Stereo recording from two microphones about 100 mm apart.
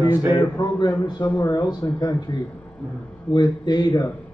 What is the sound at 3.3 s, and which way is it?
Speech, 45° left (ahead or behind).